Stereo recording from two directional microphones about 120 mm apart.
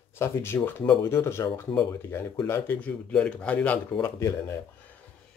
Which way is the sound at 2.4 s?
20° left (ahead or behind).